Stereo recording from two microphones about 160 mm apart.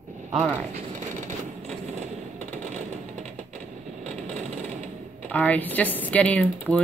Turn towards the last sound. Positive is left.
turn(degrees=10)  # may be behind; listen again after turning